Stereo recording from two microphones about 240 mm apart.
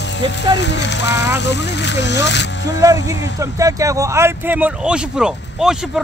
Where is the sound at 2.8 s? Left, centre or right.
Centre.